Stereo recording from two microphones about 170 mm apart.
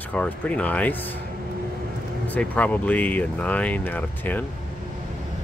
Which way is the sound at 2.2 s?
10° left (ahead or behind).